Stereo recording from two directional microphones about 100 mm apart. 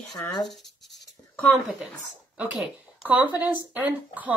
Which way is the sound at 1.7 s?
10° right (ahead or behind).